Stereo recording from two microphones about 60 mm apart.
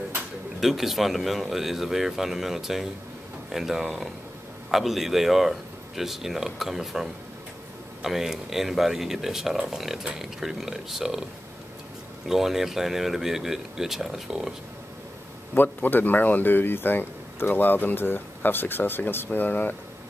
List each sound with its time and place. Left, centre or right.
0.6 s speech: centre
12.3 s speech: centre
15.5 s speech: left